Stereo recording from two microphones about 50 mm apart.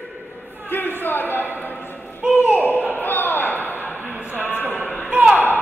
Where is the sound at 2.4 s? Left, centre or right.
Right.